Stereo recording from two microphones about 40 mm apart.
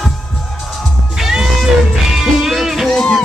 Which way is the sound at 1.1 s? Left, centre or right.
Centre.